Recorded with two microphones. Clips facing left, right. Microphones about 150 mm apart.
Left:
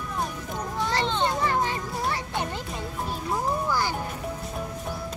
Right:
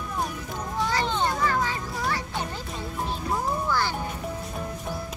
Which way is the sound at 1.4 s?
20° left (ahead or behind).